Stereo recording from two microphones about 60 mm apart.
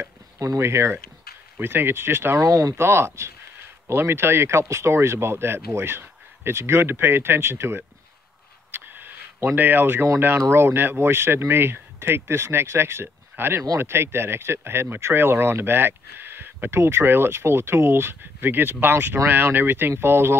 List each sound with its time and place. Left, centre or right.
0.0 s a sound: right
0.6 s speech: right
1.6 s speech: right
2.4 s speech: right
2.8 s speech: right
8.7 s a sound: right
10.1 s speech: right